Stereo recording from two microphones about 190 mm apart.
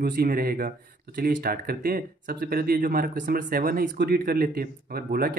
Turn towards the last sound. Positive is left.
turn(degrees=-50)  # may be behind; listen again after turning